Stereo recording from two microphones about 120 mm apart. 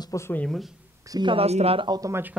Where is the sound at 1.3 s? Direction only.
60° right (ahead or behind).